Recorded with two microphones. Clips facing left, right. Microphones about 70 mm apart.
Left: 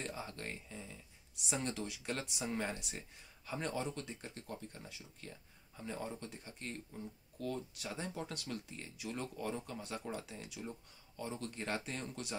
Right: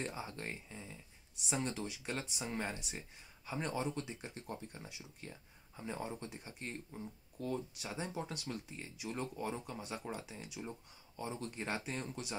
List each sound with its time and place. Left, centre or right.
0.0 s speech: centre
1.4 s speech: centre
7.8 s speech: centre